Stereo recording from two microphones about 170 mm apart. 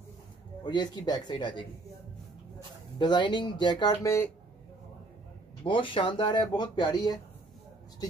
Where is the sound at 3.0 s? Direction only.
25° left (ahead or behind).